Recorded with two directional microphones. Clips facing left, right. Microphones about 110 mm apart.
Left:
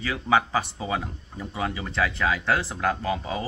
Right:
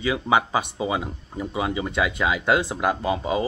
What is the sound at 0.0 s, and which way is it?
Speech, 15° right (ahead or behind).